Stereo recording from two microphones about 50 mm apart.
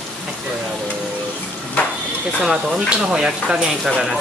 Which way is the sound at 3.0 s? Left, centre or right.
Centre.